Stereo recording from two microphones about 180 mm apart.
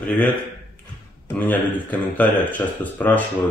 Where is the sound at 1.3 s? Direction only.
10° left (ahead or behind).